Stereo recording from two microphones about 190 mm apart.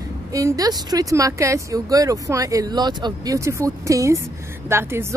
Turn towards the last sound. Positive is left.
turn(degrees=-15)  # may be behind; listen again after turning